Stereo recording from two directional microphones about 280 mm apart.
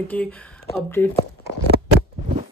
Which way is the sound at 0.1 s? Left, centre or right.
Centre.